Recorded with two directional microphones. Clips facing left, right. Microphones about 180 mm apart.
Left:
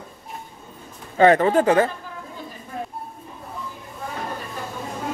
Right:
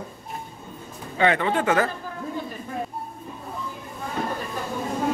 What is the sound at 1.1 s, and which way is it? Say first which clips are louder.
Speech: left 6 dB; 40° left (ahead or behind).